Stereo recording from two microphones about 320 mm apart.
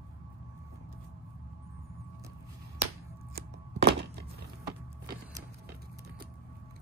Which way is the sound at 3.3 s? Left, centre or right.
Right.